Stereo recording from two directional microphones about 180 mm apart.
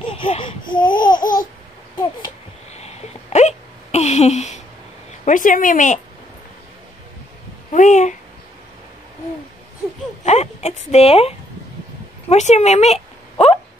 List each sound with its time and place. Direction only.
0.1 s babbling: 30° left (ahead or behind)
0.7 s laughter: 25° left (ahead or behind)
1.2 s babbling: 50° left (ahead or behind)
2.7 s hiccup: 35° left (ahead or behind)
5.2 s speech: 45° left (ahead or behind)
7.7 s speech: 45° left (ahead or behind)
10.2 s a sound: 35° left (ahead or behind)